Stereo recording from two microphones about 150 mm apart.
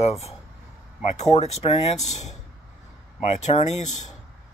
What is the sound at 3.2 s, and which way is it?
Speech, 45° left (ahead or behind).